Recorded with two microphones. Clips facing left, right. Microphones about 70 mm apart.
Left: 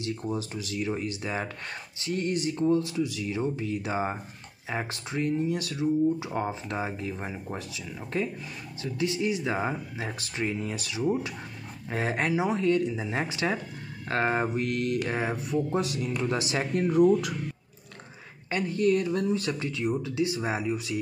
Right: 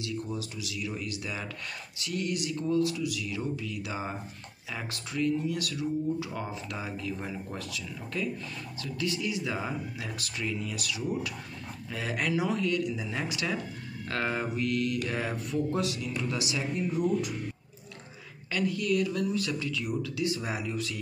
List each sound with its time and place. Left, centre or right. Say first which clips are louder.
0.0 s speech: left 3 dB; left
15.0 s speech: left 3 dB; left
16.7 s speech: left 8 dB; left
18.5 s speech: left 4 dB; left